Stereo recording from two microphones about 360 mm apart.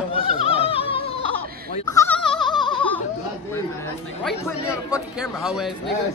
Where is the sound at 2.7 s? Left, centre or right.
Centre.